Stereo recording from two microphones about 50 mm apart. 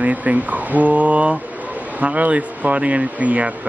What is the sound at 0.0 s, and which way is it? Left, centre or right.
Speech, right.